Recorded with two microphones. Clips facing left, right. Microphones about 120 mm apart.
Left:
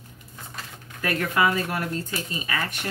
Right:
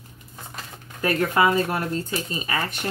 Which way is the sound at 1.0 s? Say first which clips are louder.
Right 3 dB; 30° right (ahead or behind).